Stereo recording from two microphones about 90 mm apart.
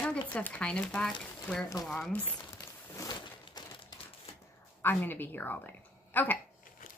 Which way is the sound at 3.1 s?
50° left (ahead or behind).